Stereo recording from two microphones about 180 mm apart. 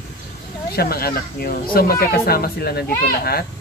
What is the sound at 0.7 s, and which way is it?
Speech, 60° left (ahead or behind).